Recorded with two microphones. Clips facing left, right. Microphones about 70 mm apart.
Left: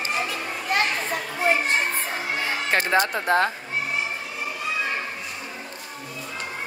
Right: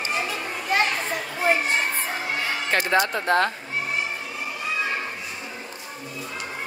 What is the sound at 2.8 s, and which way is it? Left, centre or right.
Speech, centre.